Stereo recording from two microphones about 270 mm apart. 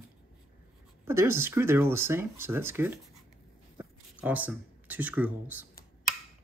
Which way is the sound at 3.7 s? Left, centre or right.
Centre.